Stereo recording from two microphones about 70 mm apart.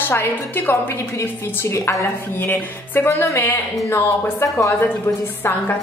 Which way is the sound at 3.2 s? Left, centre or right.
Left.